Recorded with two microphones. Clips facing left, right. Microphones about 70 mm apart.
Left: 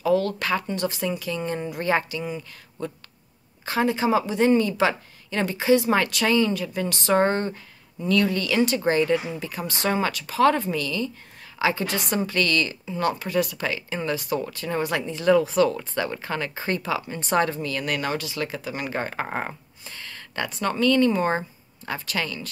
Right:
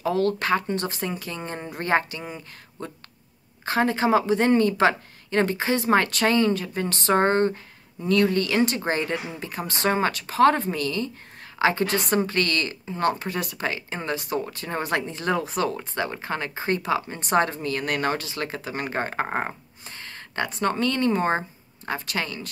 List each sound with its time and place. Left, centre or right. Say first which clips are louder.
0.0 s a woman's voice: left 1 dB; right
3.6 s a woman's voice: right 1 dB; right